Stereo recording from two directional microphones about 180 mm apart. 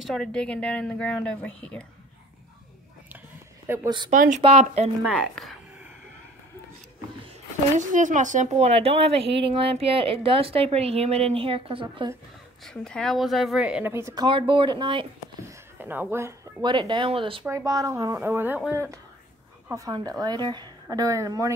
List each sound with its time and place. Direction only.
0.0 s a woman's voice: centre (ahead or behind)
3.6 s speech: 15° right (ahead or behind)
4.1 s speech: 45° right (ahead or behind)
4.4 s speech: 30° right (ahead or behind)
5.3 s speech: centre (ahead or behind)
7.7 s speech: 45° right (ahead or behind); by 12.1 s 30° right (ahead or behind)
12.6 s a woman's voice: 5° left (ahead or behind); by 15.0 s 25° right (ahead or behind)
15.4 s a sound: 10° right (ahead or behind)
16.6 s a woman's voice: 25° right (ahead or behind); by 18.8 s 10° right (ahead or behind)
19.7 s a woman's voice: 20° right (ahead or behind)